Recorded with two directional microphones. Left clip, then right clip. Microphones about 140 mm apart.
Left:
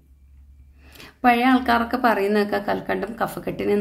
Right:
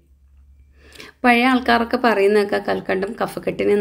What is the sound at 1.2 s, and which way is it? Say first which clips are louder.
A woman's voice: right 2 dB; 20° right (ahead or behind).